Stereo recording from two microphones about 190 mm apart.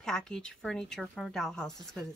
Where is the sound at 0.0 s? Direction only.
5° left (ahead or behind).